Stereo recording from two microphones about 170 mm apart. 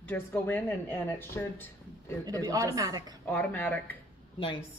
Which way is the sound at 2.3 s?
20° right (ahead or behind).